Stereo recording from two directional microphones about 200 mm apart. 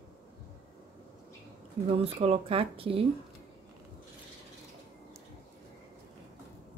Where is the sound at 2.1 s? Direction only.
30° right (ahead or behind).